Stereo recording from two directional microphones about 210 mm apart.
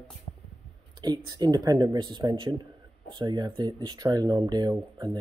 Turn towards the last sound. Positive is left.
turn(degrees=-20)  # may be behind; listen again after turning